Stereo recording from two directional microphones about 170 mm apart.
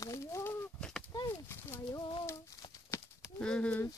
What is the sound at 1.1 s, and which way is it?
Speech, 20° left (ahead or behind).